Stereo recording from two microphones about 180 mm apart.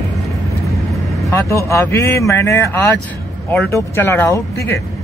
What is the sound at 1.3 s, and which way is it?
Speech, 15° left (ahead or behind).